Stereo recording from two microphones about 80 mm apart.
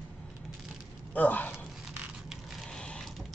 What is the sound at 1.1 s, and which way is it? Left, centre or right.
Speech, left.